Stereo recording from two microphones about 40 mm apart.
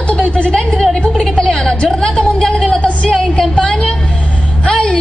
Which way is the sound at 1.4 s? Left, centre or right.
Centre.